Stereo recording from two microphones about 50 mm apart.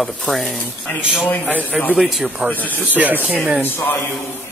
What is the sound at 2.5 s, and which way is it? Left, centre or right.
Speech, left.